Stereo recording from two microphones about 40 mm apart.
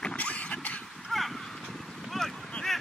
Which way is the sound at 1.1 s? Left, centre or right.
Centre.